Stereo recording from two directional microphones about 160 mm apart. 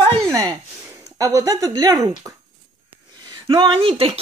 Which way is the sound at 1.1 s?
20° right (ahead or behind).